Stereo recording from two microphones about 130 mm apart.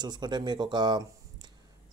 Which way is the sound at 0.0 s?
35° right (ahead or behind).